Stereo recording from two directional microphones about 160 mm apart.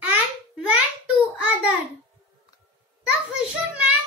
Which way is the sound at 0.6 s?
5° right (ahead or behind).